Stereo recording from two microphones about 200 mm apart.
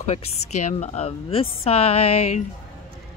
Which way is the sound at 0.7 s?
35° left (ahead or behind).